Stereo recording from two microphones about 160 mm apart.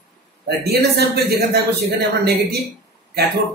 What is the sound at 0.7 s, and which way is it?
A man's voice, 85° right.